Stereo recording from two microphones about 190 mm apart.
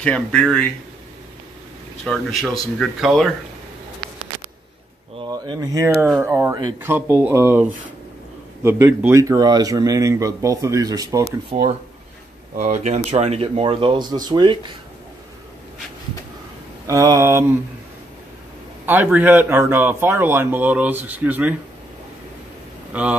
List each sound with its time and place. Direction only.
0.0 s speech: 5° left (ahead or behind)
2.1 s speech: 5° left (ahead or behind)
5.3 s speech: 20° right (ahead or behind)
12.5 s speech: 40° right (ahead or behind)
16.8 s speech: 15° right (ahead or behind)
18.9 s speech: 10° right (ahead or behind)
22.9 s speech: 10° right (ahead or behind)